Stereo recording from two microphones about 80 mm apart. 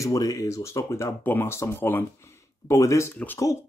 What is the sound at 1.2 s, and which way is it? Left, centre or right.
Speech, left.